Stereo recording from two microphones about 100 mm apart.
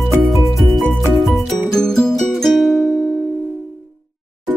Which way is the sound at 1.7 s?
5° left (ahead or behind).